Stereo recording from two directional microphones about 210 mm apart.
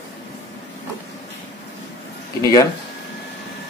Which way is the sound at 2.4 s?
15° left (ahead or behind).